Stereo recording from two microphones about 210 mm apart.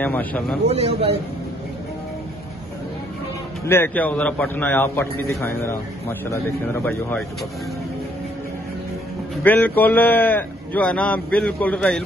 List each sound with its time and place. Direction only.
0.0 s a man's voice: 5° left (ahead or behind)
0.7 s a man's voice: 30° right (ahead or behind)
3.6 s a man's voice: 10° left (ahead or behind)
9.4 s a man's voice: 10° left (ahead or behind)